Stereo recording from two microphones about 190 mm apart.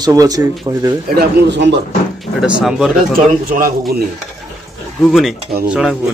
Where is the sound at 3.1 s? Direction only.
50° right (ahead or behind).